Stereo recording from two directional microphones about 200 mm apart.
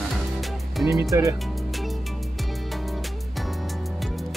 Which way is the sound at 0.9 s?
15° right (ahead or behind).